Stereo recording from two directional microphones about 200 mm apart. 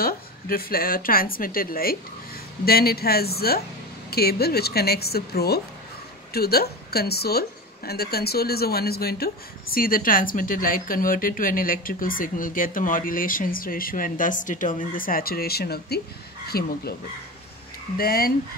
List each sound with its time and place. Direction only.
0.0 s a woman's voice: 50° left (ahead or behind)
17.9 s a woman's voice: 50° left (ahead or behind)